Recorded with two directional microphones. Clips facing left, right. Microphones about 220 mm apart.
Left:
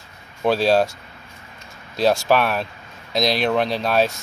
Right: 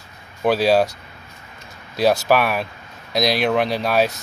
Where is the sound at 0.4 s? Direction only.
5° right (ahead or behind).